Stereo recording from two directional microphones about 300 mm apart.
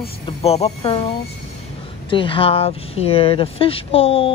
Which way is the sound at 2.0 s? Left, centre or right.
Centre.